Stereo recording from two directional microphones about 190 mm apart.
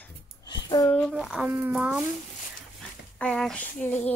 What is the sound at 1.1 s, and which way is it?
Speech, 5° right (ahead or behind).